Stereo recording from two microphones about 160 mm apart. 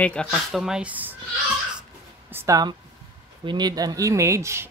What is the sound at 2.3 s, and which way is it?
Speech, 15° right (ahead or behind).